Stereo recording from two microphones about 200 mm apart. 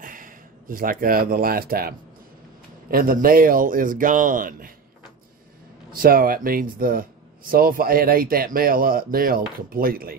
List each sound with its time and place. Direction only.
0.0 s speech: 45° right (ahead or behind)
5.9 s speech: 45° right (ahead or behind)